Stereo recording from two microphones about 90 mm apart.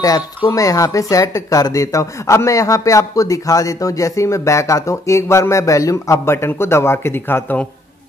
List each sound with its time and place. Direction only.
0.5 s speech: 40° left (ahead or behind); by 7.6 s 20° left (ahead or behind)